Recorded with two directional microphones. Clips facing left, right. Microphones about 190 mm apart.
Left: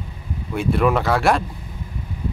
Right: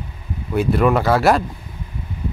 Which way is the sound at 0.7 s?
Centre (ahead or behind).